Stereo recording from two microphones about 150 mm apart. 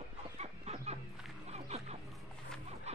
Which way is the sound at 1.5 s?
45° right (ahead or behind).